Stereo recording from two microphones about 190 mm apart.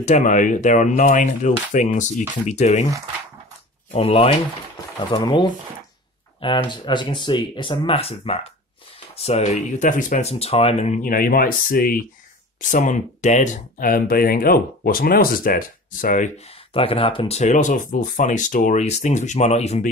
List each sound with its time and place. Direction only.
0.0 s speech: 40° left (ahead or behind)
3.9 s speech: 35° left (ahead or behind)
16.7 s speech: 30° left (ahead or behind)